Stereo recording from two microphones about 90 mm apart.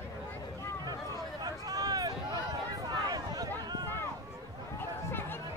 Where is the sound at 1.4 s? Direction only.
45° right (ahead or behind).